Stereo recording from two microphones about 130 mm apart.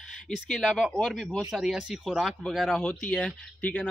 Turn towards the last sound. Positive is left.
turn(degrees=10)  # may be behind; listen again after turning